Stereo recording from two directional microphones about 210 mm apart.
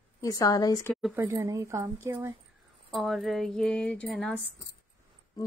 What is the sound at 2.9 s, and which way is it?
Speech, centre (ahead or behind).